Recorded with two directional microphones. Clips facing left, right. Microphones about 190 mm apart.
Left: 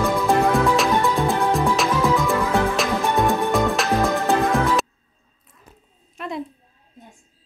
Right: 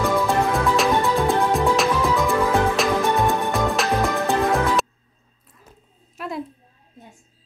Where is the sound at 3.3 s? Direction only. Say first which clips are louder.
Left 2 dB; centre (ahead or behind).